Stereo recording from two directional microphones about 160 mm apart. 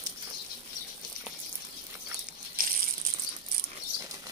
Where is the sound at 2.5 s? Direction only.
65° right (ahead or behind).